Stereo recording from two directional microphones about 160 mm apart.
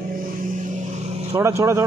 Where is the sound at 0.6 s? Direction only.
45° right (ahead or behind).